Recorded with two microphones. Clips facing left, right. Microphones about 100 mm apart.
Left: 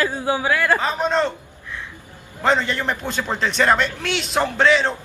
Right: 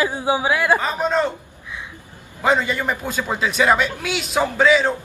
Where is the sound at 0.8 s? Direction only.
5° right (ahead or behind).